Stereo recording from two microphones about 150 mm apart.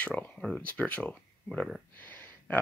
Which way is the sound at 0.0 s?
10° left (ahead or behind).